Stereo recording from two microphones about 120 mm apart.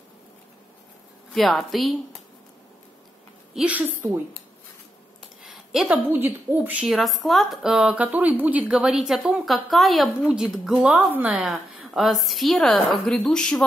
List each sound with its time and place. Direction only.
1.3 s speech: centre (ahead or behind)
3.5 s a woman's voice: 10° right (ahead or behind)
4.0 s speech: 30° right (ahead or behind)
5.4 s a sound: 5° right (ahead or behind)
6.1 s a woman's voice: 15° right (ahead or behind)
6.9 s speech: centre (ahead or behind)